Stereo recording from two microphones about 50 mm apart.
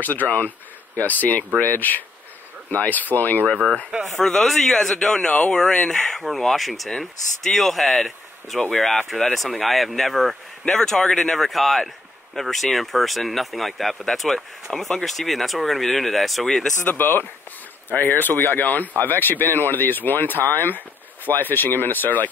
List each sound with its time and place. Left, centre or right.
0.0 s speech: left
3.4 s speech: centre
8.5 s speech: centre
16.8 s speech: left